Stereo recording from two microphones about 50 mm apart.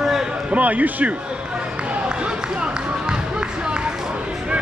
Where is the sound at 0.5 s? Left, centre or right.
Right.